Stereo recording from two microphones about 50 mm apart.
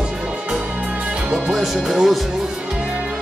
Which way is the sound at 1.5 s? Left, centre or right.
Centre.